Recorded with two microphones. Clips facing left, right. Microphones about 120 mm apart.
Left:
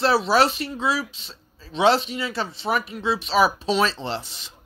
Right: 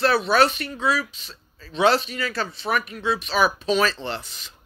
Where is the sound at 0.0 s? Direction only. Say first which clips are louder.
Even; 25° left (ahead or behind).